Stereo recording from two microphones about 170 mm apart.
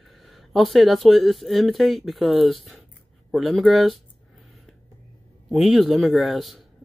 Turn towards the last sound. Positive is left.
turn(degrees=0)  # may be behind; listen again after turning